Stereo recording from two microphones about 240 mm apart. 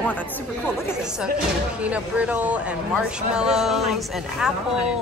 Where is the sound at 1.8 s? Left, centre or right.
Centre.